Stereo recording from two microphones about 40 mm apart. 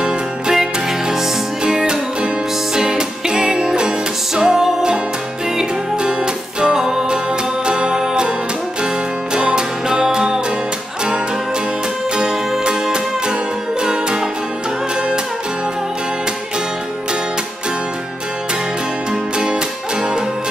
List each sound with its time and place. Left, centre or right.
0.0 s music: centre
6.7 s music: centre
9.3 s music: centre
12.3 s music: centre